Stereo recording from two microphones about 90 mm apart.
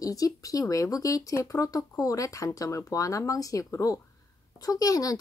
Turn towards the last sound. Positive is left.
turn(degrees=40)  # may be behind; listen again after turning